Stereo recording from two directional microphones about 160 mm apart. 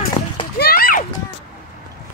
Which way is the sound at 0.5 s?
70° left (ahead or behind).